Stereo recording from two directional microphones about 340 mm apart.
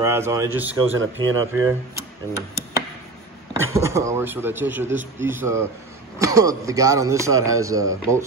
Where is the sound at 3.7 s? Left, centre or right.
Centre.